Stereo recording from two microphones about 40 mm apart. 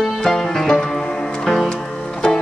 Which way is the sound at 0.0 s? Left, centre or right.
Centre.